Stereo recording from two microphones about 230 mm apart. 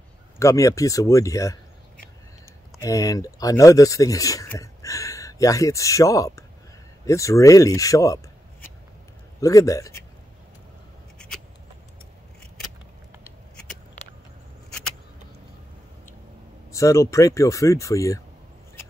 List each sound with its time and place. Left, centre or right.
0.4 s speech: centre
2.8 s speech: centre
9.4 s speech: centre
11.1 s a sound: centre
16.7 s speech: centre